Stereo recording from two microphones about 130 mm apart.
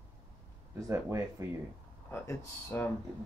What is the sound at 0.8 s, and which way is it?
Speech, 20° right (ahead or behind).